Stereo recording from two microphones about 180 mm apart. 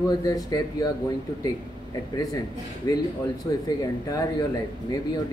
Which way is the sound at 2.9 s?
20° left (ahead or behind).